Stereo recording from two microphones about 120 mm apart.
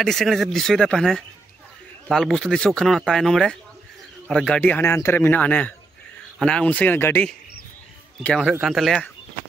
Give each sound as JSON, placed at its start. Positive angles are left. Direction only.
{"t": 0.0, "sound": "speech", "side_deg": 0}
{"t": 8.2, "sound": "speech", "side_deg": 5}